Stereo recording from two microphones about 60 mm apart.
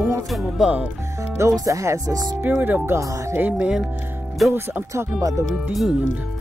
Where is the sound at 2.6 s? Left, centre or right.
Right.